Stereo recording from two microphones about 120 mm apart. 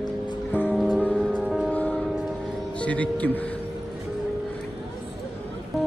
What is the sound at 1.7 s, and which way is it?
Music, 10° left (ahead or behind).